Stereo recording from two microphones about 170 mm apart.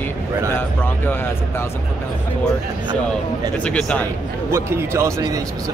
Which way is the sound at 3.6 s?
5° left (ahead or behind).